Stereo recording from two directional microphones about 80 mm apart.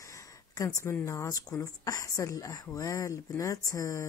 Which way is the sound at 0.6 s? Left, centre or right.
Left.